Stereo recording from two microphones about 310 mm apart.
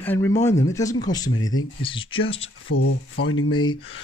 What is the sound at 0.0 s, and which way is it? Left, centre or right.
Speech, centre.